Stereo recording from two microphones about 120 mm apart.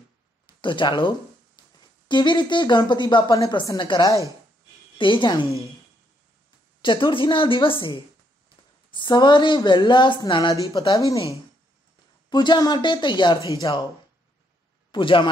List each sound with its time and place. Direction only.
0.6 s a woman's voice: 40° left (ahead or behind)
6.8 s a woman's voice: 40° left (ahead or behind)
8.9 s speech: 40° left (ahead or behind)
12.3 s speech: 35° left (ahead or behind)
14.9 s speech: 45° left (ahead or behind)